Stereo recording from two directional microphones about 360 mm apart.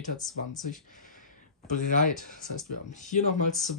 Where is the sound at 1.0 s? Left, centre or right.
Left.